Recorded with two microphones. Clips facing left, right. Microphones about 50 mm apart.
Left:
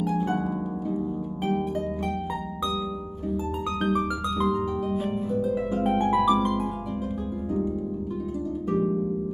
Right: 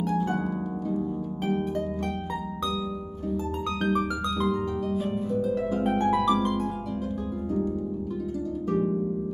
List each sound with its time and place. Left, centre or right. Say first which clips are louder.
0.0 s harp: even; centre
4.2 s harp: left 1 dB; centre
5.8 s music: left 2 dB; centre